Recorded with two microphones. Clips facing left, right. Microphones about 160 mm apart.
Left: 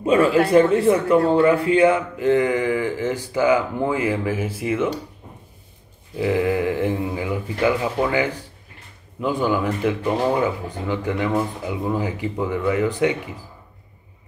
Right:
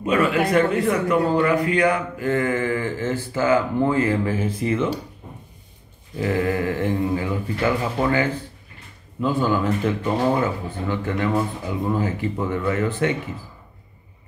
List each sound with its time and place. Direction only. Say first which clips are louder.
0.0 s speech: left 3 dB; 30° left (ahead or behind); by 4.8 s 10° left (ahead or behind)
6.1 s speech: left 2 dB; 15° left (ahead or behind)